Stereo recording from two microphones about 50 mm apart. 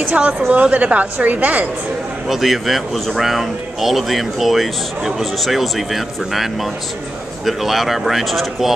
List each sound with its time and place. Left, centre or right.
0.0 s a woman's voice: right
2.2 s speech: centre